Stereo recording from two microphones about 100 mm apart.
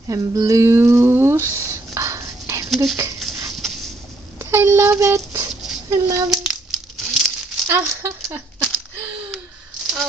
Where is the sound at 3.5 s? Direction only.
Centre (ahead or behind).